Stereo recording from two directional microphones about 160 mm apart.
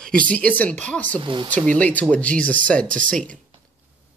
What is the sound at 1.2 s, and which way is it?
Speech, 30° right (ahead or behind).